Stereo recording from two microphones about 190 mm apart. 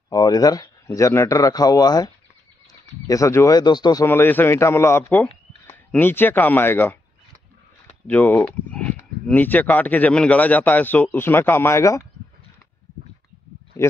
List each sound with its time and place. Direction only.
0.1 s speech: 20° left (ahead or behind)
8.1 s speech: 10° left (ahead or behind)